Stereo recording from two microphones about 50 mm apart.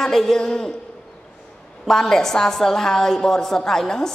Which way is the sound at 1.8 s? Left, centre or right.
Centre.